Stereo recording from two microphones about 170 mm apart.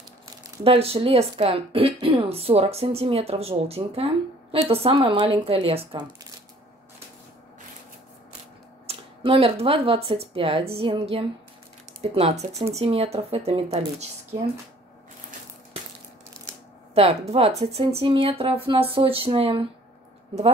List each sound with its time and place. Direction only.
0.7 s speech: 35° right (ahead or behind)
8.8 s speech: 35° right (ahead or behind)
16.5 s shuffling cards: 15° right (ahead or behind)
16.9 s speech: 35° right (ahead or behind)